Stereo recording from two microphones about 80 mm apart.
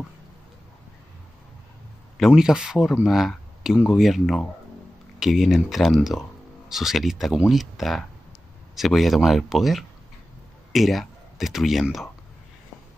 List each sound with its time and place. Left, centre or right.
2.1 s speech: centre